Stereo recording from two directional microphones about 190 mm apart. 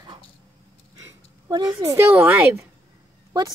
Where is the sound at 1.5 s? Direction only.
20° right (ahead or behind).